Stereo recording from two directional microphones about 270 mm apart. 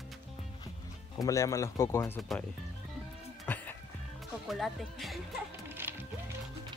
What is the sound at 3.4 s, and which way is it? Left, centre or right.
Music, centre.